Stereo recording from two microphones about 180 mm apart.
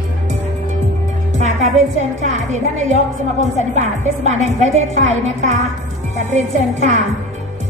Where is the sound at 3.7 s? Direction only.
40° right (ahead or behind).